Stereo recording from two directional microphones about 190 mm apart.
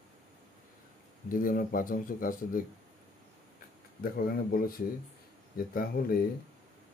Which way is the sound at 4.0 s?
50° left (ahead or behind).